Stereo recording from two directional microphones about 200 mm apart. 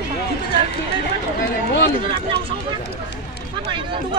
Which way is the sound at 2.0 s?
25° right (ahead or behind).